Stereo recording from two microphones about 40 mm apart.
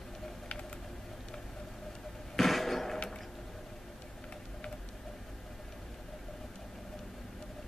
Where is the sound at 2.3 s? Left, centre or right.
Centre.